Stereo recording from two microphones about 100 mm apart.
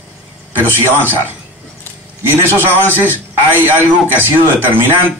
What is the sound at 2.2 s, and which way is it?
A man's voice, 20° right (ahead or behind).